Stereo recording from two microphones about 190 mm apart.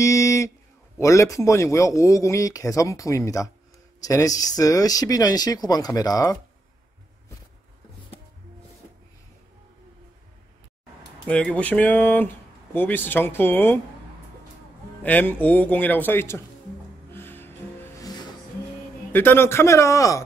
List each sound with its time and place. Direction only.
0.0 s a sound: 15° left (ahead or behind)
0.9 s a man's voice: 15° left (ahead or behind)
11.5 s a man's voice: 5° left (ahead or behind)
15.0 s a man's voice: 10° left (ahead or behind)
17.1 s music: 10° left (ahead or behind)
19.1 s a man's voice: 10° left (ahead or behind)